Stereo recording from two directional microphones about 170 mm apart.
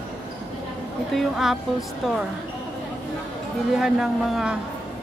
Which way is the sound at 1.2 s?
Centre (ahead or behind).